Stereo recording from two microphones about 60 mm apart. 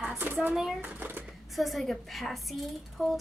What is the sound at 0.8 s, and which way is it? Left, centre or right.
Speech, right.